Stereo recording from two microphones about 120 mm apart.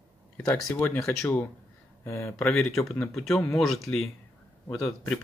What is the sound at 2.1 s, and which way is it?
Speech, 25° left (ahead or behind).